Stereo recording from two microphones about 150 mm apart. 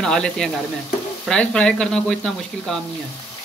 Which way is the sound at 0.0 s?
5° left (ahead or behind).